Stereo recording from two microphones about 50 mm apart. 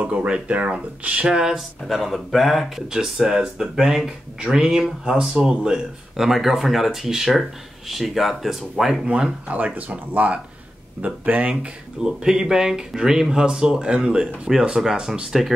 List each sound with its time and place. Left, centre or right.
0.0 s speech: right
1.9 s speech: centre
2.9 s speech: centre
9.0 s speech: right
12.0 s speech: centre